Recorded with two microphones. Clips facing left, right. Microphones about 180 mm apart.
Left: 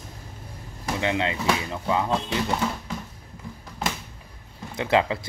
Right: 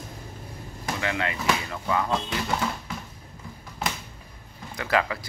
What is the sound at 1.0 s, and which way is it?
Speech, 20° left (ahead or behind).